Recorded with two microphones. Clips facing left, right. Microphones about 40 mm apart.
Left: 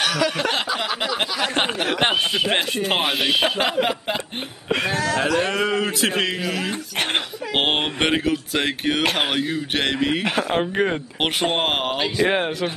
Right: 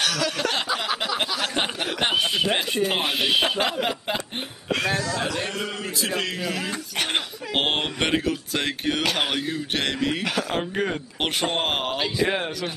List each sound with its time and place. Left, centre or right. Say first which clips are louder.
0.0 s a sound: left 3 dB; centre
0.7 s a sound: left 2 dB; centre
1.5 s speech: left 4 dB; left
2.1 s speech: left 2 dB; centre
3.5 s speech: left 3 dB; centre
4.6 s a sound: left 2 dB; centre
4.9 s a man's voice: left 6 dB; left
6.4 s speech: left 3 dB; centre
7.5 s speech: left 3 dB; centre
9.0 s speech: left 3 dB; left
9.3 s speech: left 3 dB; centre
10.2 s speech: left 4 dB; left
12.2 s speech: left 6 dB; left